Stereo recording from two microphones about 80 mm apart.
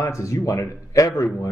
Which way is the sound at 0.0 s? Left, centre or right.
Left.